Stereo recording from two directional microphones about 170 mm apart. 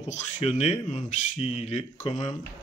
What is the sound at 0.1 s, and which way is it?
Speech, 45° left (ahead or behind).